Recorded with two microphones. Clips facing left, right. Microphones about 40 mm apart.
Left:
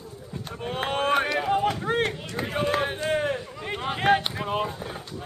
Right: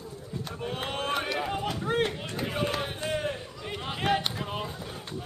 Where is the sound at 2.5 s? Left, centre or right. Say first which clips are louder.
Left 7 dB; left.